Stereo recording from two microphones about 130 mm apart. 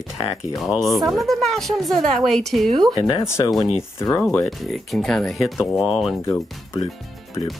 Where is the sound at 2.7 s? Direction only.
30° right (ahead or behind).